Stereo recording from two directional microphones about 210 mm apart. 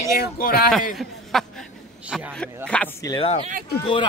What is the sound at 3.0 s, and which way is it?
Speech, 20° left (ahead or behind).